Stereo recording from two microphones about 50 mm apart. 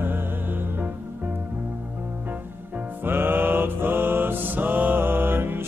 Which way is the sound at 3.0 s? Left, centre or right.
Right.